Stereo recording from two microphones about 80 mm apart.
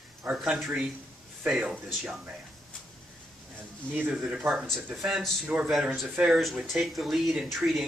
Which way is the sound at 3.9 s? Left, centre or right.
Right.